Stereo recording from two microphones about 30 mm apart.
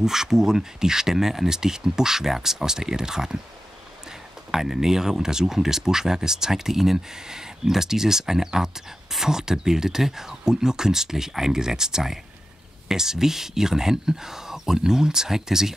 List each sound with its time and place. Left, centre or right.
0.0 s speech: centre
4.5 s speech: centre